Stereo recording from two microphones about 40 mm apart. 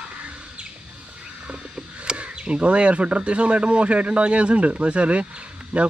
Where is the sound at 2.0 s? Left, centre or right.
Right.